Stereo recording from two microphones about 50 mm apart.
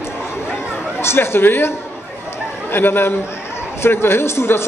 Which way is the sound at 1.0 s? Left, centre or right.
Left.